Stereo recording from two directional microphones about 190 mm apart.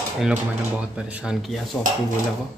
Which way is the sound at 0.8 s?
5° right (ahead or behind).